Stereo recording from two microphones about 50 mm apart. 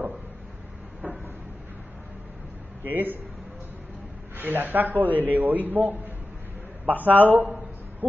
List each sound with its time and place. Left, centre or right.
1.0 s cupboard open or close: right
2.8 s a man's voice: right
4.4 s a man's voice: right